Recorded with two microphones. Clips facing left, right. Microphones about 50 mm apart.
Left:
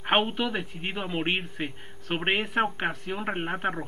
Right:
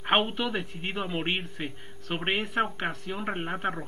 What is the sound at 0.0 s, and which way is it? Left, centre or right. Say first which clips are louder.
A man's voice: left 1 dB; centre.